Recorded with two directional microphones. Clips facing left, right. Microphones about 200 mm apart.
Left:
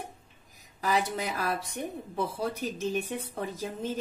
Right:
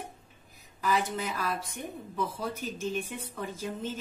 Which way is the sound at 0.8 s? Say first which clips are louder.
Left 1 dB; 40° left (ahead or behind).